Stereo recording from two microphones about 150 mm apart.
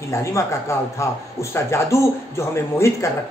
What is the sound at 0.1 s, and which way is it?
A man's voice, 20° left (ahead or behind).